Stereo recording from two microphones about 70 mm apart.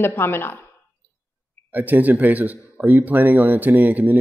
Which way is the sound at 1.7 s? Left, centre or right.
Right.